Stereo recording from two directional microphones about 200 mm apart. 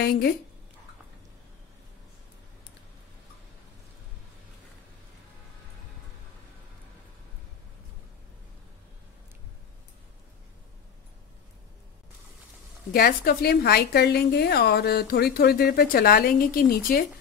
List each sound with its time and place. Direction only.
0.0 s a woman's voice: 55° left (ahead or behind)
12.9 s a woman's voice: 50° left (ahead or behind)